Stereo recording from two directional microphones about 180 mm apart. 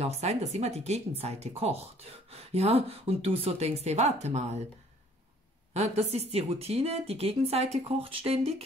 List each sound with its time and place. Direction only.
0.0 s speech: 35° right (ahead or behind)
5.7 s speech: 35° right (ahead or behind)